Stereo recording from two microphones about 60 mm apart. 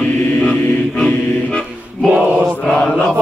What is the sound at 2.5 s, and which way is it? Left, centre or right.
Mantra, left.